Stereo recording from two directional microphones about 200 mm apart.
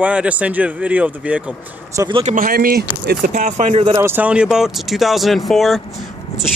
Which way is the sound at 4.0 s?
10° right (ahead or behind).